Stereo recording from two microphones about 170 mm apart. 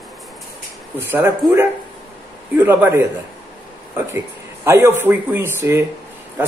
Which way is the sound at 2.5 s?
10° right (ahead or behind).